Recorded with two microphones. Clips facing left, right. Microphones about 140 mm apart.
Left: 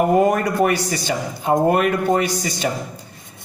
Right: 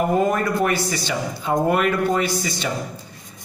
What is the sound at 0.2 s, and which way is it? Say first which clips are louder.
Speech: left 3 dB; 65° left (ahead or behind).